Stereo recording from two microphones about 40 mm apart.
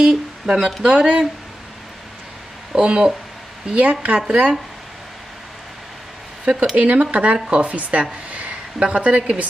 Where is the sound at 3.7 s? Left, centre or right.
Right.